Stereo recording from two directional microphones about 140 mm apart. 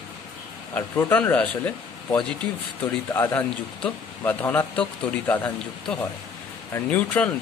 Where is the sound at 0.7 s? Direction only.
10° left (ahead or behind).